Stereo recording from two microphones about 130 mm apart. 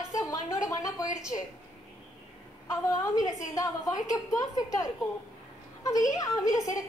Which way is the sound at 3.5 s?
25° left (ahead or behind).